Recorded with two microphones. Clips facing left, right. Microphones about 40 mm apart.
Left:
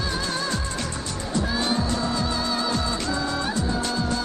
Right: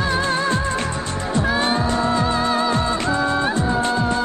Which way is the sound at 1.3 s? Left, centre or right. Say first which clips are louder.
Right 5 dB; right.